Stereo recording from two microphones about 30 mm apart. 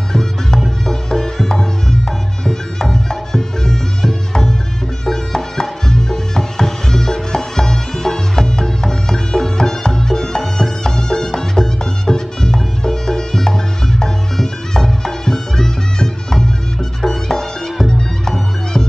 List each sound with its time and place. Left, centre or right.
0.1 s music: centre